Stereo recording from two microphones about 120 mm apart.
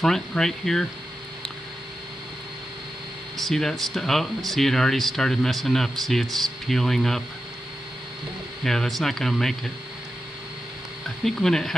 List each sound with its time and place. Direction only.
0.0 s speech: 5° left (ahead or behind)
3.3 s speech: 5° left (ahead or behind)
8.6 s speech: 5° left (ahead or behind)
11.2 s speech: 5° left (ahead or behind)